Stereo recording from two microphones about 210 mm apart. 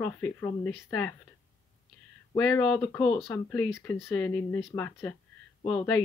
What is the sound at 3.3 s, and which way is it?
Speech, 10° left (ahead or behind).